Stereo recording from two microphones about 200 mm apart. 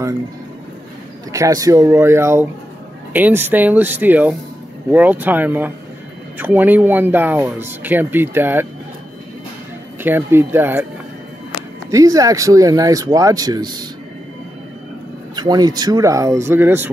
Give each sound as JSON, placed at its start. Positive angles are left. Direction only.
{"t": 1.3, "sound": "speech", "side_deg": -15}
{"t": 10.0, "sound": "speech", "side_deg": -10}
{"t": 11.9, "sound": "speech", "side_deg": -15}
{"t": 15.3, "sound": "speech", "side_deg": -20}